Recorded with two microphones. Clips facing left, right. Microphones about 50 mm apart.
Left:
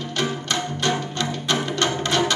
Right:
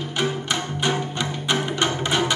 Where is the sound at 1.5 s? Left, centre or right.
Centre.